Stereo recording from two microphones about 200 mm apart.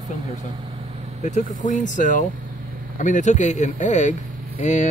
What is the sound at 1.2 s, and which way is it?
Speech, 35° left (ahead or behind).